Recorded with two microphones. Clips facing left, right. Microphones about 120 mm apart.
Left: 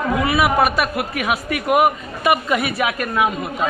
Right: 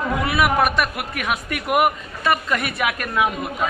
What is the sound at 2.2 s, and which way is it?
A man's voice, 10° left (ahead or behind).